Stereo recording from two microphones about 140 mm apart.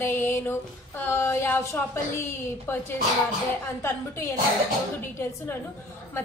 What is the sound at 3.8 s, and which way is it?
Speech, 20° left (ahead or behind).